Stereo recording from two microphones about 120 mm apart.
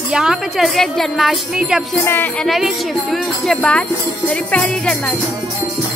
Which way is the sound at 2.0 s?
15° left (ahead or behind).